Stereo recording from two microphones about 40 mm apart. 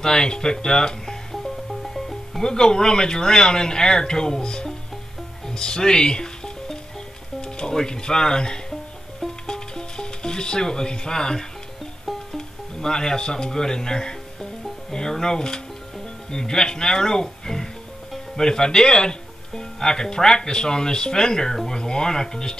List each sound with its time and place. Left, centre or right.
0.0 s speech: centre
1.3 s speech: centre
5.5 s music: centre
7.4 s speech: centre
9.5 s music: centre
12.4 s speech: centre